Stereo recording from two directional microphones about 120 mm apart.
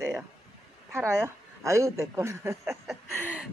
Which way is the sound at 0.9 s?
20° right (ahead or behind).